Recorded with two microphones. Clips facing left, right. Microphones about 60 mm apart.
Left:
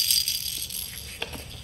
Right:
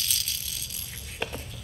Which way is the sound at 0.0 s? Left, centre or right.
Centre.